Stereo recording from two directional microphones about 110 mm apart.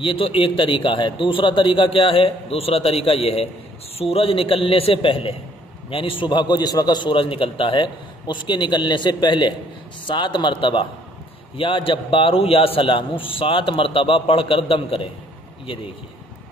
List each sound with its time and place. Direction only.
0.0 s a man's voice: 55° left (ahead or behind)